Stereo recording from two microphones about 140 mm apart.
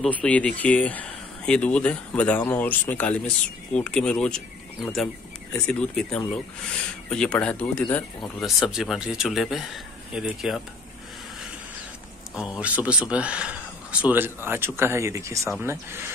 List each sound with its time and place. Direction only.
0.0 s speech: 10° left (ahead or behind)
8.4 s speech: centre (ahead or behind)
12.4 s a man's voice: 10° right (ahead or behind)